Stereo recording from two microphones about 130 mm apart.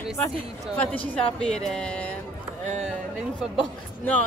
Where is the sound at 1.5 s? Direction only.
5° left (ahead or behind).